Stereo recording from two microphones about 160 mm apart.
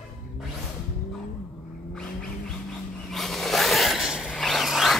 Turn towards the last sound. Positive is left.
turn(degrees=0)  # may be behind; listen again after turning